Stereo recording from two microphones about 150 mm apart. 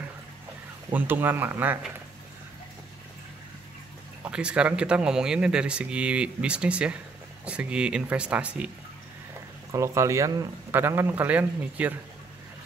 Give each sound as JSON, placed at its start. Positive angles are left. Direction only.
{"t": 0.9, "sound": "speech", "side_deg": -15}
{"t": 4.2, "sound": "speech", "side_deg": -5}
{"t": 9.7, "sound": "speech", "side_deg": -20}